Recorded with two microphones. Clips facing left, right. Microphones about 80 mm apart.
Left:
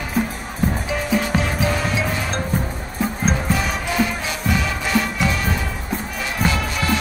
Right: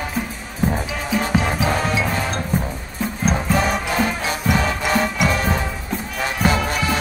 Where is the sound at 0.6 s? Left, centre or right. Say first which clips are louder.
Right 1 dB; centre.